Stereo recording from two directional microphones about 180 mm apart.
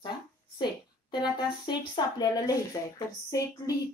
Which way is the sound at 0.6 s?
25° left (ahead or behind).